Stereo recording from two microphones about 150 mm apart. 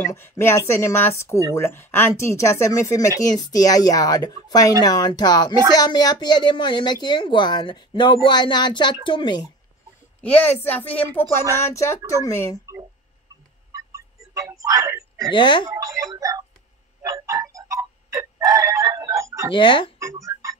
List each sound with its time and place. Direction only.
0.1 s a woman's voice: 15° left (ahead or behind)
10.2 s a woman's voice: 10° left (ahead or behind)
13.7 s a sound: 20° right (ahead or behind)
15.3 s a woman's voice: 30° left (ahead or behind)
15.7 s speech: 20° right (ahead or behind)
17.0 s clock: 20° right (ahead or behind)
19.5 s a woman's voice: 30° left (ahead or behind)
20.0 s music: 20° right (ahead or behind)